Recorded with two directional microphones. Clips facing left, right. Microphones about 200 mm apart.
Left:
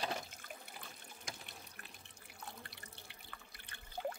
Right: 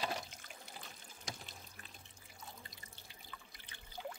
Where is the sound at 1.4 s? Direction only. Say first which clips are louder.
Even; 65° left (ahead or behind).